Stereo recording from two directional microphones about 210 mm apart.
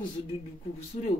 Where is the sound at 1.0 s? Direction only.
35° left (ahead or behind).